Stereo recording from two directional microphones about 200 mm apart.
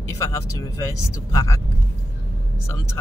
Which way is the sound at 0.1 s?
15° left (ahead or behind).